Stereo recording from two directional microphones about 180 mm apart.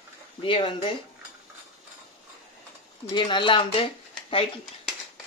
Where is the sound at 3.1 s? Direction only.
25° left (ahead or behind).